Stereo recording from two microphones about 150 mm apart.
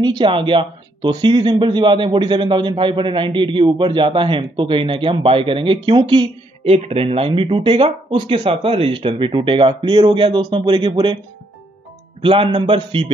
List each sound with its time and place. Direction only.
0.0 s speech: 30° right (ahead or behind)
12.2 s speech: 35° right (ahead or behind)